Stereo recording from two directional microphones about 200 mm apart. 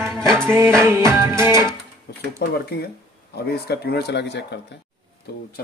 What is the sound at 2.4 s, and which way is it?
Speech, 50° left (ahead or behind).